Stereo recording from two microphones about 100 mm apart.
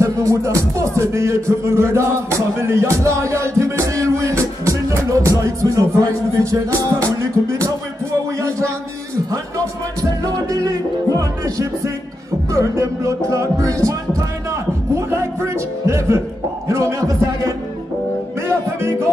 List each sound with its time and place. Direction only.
0.0 s speech: 30° right (ahead or behind)
5.4 s music: 30° right (ahead or behind)
8.4 s a sound: 30° right (ahead or behind)
10.2 s music: 40° right (ahead or behind)
15.0 s a man's voice: 30° right (ahead or behind)
16.6 s music: 30° right (ahead or behind)